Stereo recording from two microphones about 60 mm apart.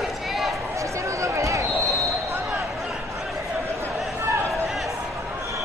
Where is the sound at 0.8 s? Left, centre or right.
Right.